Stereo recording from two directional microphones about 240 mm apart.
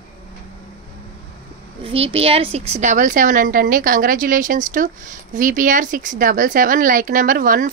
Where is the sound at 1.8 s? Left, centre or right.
Right.